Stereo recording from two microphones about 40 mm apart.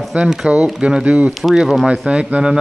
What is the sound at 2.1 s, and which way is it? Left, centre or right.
Speech, right.